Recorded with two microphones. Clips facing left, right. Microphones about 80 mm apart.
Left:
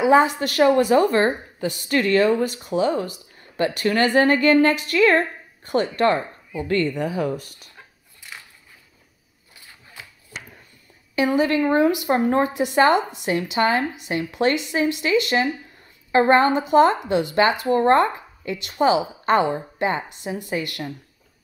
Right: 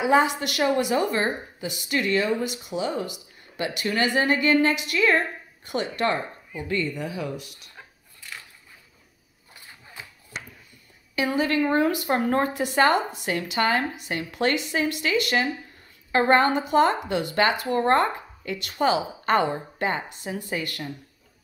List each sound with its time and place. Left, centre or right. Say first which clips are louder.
0.0 s a woman's voice: left 4 dB; left
7.3 s speech: left 4 dB; centre
11.1 s a woman's voice: left 4 dB; left